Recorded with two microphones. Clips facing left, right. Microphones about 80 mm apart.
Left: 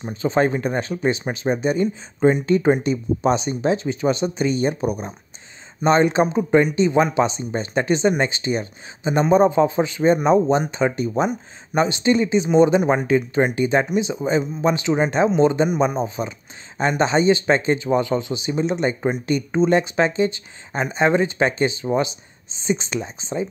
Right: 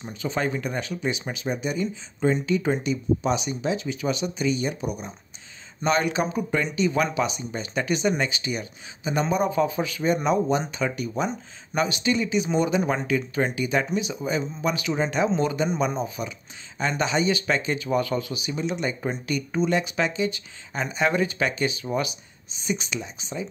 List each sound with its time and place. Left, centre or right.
0.0 s speech: left